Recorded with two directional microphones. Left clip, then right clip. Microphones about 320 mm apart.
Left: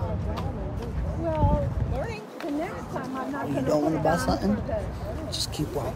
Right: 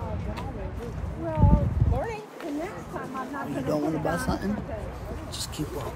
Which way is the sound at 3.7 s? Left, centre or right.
Centre.